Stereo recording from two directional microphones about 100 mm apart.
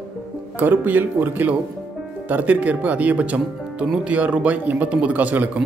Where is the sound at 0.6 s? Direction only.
20° right (ahead or behind).